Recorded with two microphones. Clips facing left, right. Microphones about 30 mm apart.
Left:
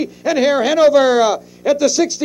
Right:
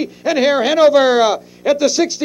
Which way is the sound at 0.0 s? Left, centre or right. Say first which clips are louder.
Even; right.